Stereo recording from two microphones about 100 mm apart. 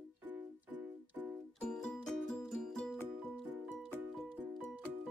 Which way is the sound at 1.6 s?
10° left (ahead or behind).